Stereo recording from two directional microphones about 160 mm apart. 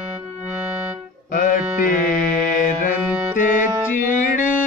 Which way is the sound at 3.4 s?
55° left (ahead or behind).